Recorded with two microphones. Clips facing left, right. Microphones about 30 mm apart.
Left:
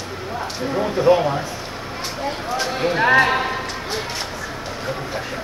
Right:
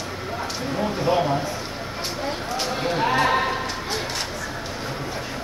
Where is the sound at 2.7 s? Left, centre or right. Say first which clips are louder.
Left 7 dB; left.